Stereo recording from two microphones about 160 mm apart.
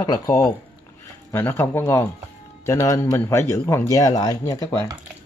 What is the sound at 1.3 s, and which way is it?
Speech, 15° left (ahead or behind).